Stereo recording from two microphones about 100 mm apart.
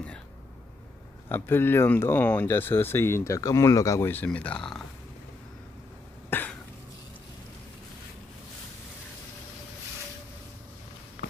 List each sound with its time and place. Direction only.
1.3 s speech: 25° left (ahead or behind)
4.1 s speech: 15° left (ahead or behind)
6.3 s cough: 20° left (ahead or behind)